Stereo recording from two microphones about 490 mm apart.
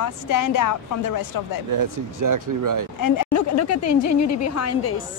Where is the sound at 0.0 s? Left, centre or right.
Left.